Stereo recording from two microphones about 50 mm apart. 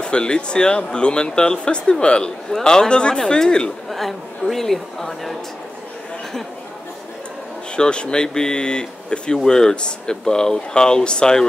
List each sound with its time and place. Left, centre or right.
0.0 s speech: centre
3.9 s speech: centre
7.7 s speech: centre